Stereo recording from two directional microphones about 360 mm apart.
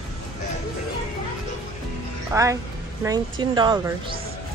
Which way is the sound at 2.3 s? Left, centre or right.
Centre.